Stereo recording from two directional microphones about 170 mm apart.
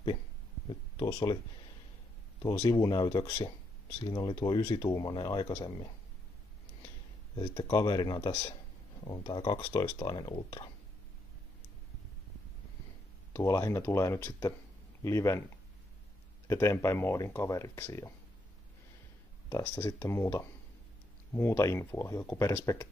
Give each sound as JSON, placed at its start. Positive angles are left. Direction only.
{"t": 0.7, "sound": "a sound", "side_deg": 25}
{"t": 2.6, "sound": "speech", "side_deg": 20}
{"t": 7.3, "sound": "speech", "side_deg": 25}
{"t": 13.3, "sound": "speech", "side_deg": 15}
{"t": 16.4, "sound": "speech", "side_deg": 15}
{"t": 19.5, "sound": "speech", "side_deg": 20}